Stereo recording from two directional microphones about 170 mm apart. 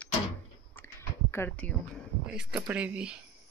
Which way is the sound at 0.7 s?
15° left (ahead or behind).